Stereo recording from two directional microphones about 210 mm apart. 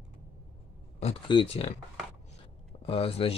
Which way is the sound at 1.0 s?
25° left (ahead or behind).